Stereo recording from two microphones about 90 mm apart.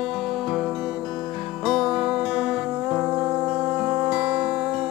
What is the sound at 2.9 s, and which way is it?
Music, 20° right (ahead or behind).